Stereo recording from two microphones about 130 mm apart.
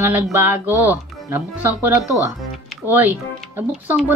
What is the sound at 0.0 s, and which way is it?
Speech, 15° right (ahead or behind).